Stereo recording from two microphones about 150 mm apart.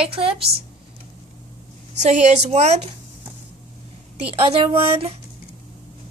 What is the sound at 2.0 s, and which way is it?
Speech, 45° right (ahead or behind).